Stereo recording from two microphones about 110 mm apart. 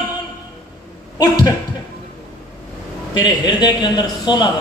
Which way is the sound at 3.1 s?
40° left (ahead or behind).